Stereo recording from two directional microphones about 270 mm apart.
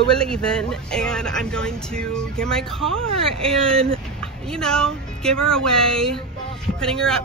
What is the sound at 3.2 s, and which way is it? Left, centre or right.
Speech, right.